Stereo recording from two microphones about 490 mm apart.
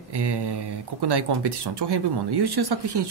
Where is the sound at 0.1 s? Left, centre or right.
Right.